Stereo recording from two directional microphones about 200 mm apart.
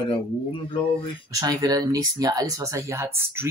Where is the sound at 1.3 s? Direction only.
20° right (ahead or behind).